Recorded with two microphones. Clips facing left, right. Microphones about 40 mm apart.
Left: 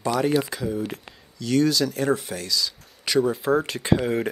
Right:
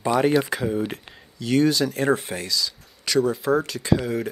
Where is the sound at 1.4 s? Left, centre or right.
Right.